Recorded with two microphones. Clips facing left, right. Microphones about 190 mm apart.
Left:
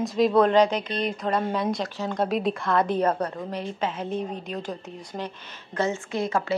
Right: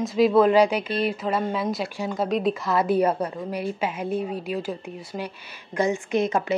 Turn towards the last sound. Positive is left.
turn(degrees=-20)  # may be behind; listen again after turning